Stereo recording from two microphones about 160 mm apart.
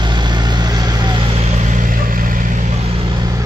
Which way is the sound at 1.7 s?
55° right (ahead or behind).